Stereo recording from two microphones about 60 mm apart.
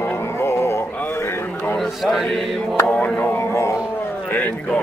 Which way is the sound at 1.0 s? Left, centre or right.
Left.